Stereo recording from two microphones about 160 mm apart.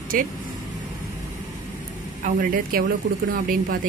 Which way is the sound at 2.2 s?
60° right (ahead or behind).